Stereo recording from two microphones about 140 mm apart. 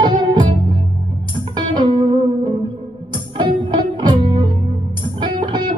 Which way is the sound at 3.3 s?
35° right (ahead or behind).